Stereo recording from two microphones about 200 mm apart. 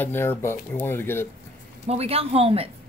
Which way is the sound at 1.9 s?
30° right (ahead or behind).